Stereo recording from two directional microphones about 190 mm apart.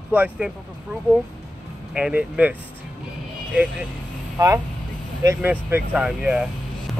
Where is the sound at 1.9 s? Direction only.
5° right (ahead or behind).